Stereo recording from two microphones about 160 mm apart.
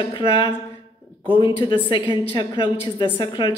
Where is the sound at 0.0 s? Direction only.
30° left (ahead or behind).